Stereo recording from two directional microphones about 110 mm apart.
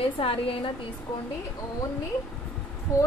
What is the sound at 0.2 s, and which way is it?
Speech, 60° left (ahead or behind).